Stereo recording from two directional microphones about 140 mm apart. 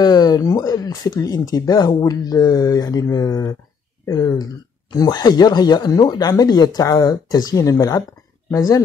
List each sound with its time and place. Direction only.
0.0 s speech: 30° left (ahead or behind)